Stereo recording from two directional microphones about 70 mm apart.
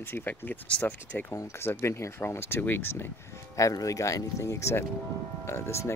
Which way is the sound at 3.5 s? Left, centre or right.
Left.